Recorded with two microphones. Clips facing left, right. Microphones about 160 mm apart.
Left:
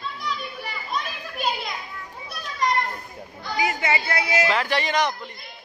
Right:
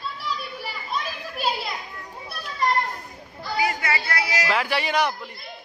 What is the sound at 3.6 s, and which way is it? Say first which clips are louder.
Speech: left 1 dB; 25° left (ahead or behind).